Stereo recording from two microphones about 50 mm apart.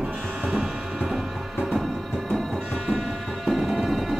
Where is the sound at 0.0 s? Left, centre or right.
Centre.